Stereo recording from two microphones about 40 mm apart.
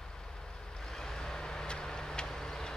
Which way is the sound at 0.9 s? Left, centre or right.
Centre.